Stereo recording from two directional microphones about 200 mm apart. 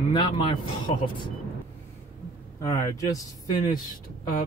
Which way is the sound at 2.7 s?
15° left (ahead or behind).